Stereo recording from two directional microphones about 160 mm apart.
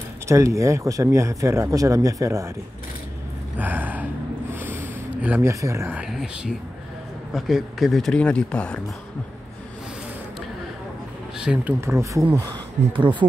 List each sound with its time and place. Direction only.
0.3 s speech: 20° right (ahead or behind)
3.5 s gasp: 10° right (ahead or behind)
5.9 s speech: 5° right (ahead or behind)
11.3 s speech: 5° right (ahead or behind)
11.8 s speech: 20° right (ahead or behind)
12.9 s speech: 30° right (ahead or behind)